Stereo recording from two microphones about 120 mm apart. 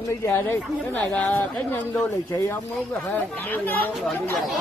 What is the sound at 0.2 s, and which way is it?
Speech, 20° left (ahead or behind).